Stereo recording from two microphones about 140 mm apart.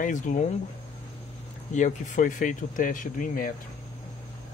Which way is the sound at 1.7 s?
60° left (ahead or behind).